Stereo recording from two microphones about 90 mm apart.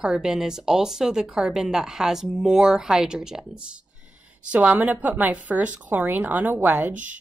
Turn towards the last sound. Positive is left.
turn(degrees=-20)  # may be behind; listen again after turning